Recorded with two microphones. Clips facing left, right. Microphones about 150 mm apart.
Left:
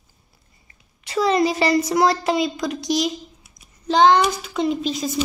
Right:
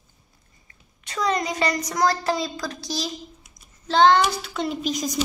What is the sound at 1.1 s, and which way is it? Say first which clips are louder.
A child's voice: left 6 dB; 30° left (ahead or behind).